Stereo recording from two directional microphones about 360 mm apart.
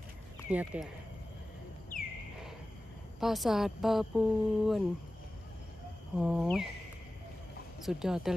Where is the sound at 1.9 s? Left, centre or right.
Left.